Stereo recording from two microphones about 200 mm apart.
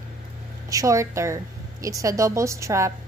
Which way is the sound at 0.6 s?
15° right (ahead or behind).